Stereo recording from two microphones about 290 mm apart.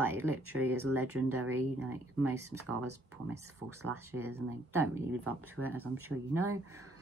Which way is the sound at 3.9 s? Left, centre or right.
Centre.